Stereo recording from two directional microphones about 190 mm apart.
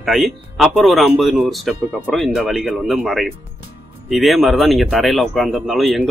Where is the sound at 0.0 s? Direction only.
Centre (ahead or behind).